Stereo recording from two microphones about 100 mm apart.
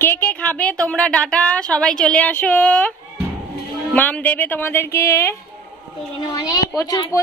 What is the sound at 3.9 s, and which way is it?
Speech, 15° left (ahead or behind).